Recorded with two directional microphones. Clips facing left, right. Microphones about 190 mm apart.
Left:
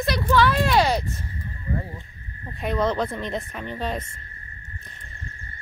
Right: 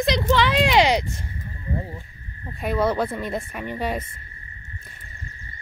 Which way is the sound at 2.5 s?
5° right (ahead or behind).